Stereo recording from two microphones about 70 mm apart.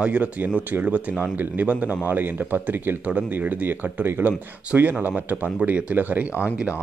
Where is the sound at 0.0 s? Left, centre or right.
Right.